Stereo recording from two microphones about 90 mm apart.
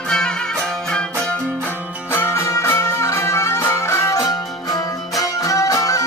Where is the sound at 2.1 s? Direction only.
25° left (ahead or behind).